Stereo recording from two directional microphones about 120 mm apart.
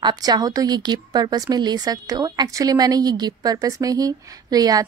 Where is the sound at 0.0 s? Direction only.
35° right (ahead or behind).